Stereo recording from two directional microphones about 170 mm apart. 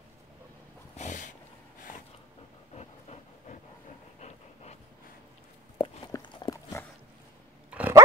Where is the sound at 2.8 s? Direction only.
40° left (ahead or behind).